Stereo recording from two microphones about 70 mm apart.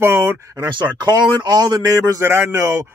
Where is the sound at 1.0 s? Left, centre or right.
Right.